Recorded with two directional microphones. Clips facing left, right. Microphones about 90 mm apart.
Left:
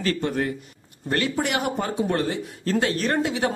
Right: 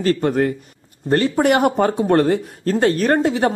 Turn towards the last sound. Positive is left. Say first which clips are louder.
# right 7 dB
turn(degrees=-45)  # may be behind; listen again after turning